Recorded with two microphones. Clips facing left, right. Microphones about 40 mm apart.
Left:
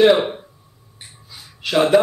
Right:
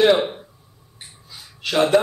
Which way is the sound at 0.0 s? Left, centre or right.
Centre.